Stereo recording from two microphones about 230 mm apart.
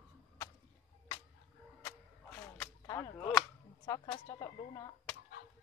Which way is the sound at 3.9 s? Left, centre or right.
Centre.